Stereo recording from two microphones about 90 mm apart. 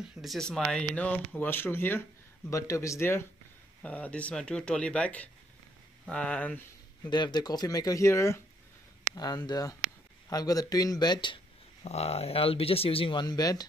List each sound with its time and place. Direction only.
0.2 s speech: 5° left (ahead or behind); by 2.0 s 25° left (ahead or behind)
2.5 s speech: 35° left (ahead or behind)
3.8 s speech: 15° left (ahead or behind)
7.1 s speech: 55° left (ahead or behind); by 8.4 s 30° left (ahead or behind)
9.1 s speech: 50° left (ahead or behind)
12.3 s speech: 90° left; by 13.7 s 45° left (ahead or behind)